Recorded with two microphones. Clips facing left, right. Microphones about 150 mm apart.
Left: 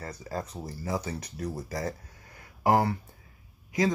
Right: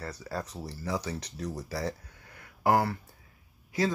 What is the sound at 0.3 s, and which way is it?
Speech, 15° left (ahead or behind).